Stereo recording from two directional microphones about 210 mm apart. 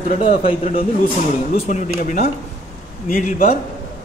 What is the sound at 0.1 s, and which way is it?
A man's voice, 30° left (ahead or behind).